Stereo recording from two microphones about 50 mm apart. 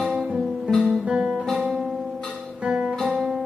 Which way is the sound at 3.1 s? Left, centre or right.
Centre.